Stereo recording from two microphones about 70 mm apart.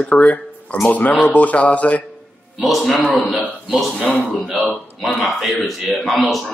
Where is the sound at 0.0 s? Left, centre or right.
Centre.